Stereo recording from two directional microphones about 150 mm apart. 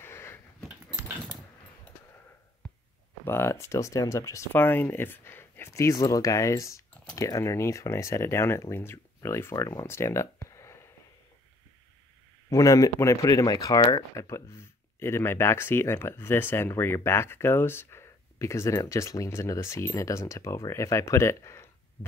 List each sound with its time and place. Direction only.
0.0 s a sound: 15° left (ahead or behind)
3.3 s speech: 15° left (ahead or behind)
12.4 s speech: 20° left (ahead or behind)